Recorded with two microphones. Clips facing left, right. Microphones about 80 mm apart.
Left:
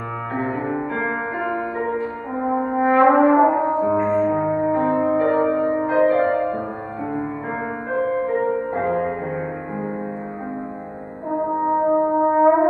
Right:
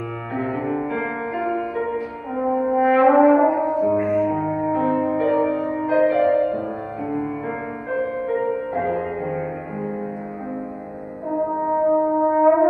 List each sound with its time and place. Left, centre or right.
0.3 s music: left
0.9 s french horn: left
3.3 s brass instrument: left
3.9 s music: left
7.9 s music: left
11.7 s brass instrument: left